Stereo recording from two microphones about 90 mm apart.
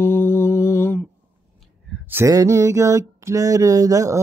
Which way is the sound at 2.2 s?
35° right (ahead or behind).